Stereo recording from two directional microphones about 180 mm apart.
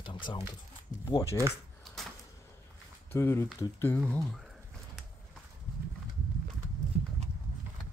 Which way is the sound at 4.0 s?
5° left (ahead or behind).